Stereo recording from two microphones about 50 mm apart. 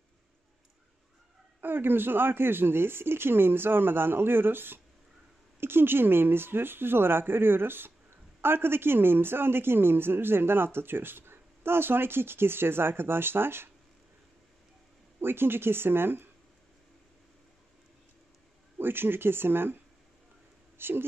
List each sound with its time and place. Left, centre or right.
1.6 s speech: right
15.1 s speech: right
18.8 s speech: right